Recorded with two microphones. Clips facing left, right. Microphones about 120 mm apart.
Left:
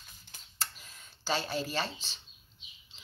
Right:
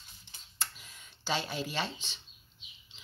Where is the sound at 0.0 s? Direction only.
45° left (ahead or behind).